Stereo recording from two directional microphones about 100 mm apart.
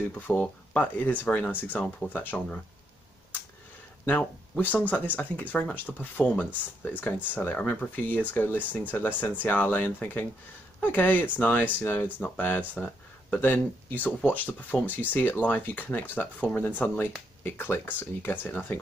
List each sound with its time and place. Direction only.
0.1 s speech: 15° left (ahead or behind)
4.0 s speech: 15° left (ahead or behind)